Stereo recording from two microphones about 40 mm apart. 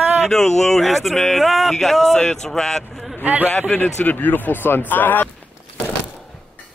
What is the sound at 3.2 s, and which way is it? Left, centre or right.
Speech, right.